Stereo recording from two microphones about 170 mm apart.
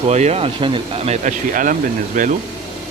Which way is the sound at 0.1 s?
40° right (ahead or behind).